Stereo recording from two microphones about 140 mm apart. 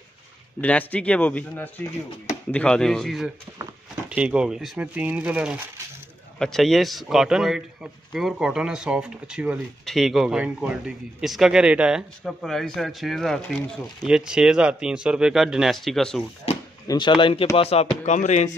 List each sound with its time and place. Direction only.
0.6 s a man's voice: 10° left (ahead or behind)
16.8 s speech: 30° left (ahead or behind); by 18.5 s 60° left (ahead or behind)